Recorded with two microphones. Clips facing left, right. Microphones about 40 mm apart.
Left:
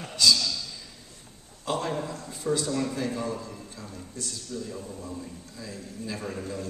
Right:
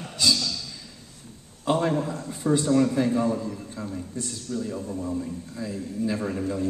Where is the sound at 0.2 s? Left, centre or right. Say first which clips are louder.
Left 1 dB; centre.